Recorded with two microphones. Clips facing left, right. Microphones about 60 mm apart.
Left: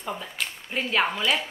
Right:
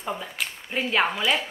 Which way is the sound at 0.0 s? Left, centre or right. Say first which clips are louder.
Right 1 dB; centre.